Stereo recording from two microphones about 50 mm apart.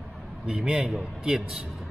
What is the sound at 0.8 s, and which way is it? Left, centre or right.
Speech, centre.